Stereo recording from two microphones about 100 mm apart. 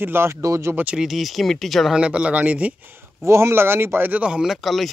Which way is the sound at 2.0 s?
10° right (ahead or behind).